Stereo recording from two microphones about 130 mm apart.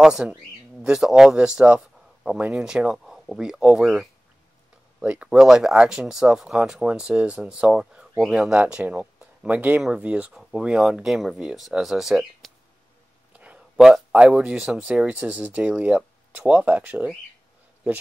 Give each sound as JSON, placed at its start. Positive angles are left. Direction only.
{"t": 0.0, "sound": "speech", "side_deg": -5}